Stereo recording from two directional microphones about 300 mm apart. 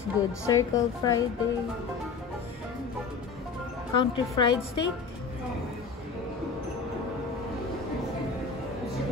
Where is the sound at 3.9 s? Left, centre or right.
Left.